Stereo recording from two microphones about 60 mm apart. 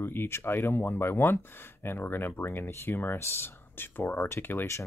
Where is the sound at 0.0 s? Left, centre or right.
Left.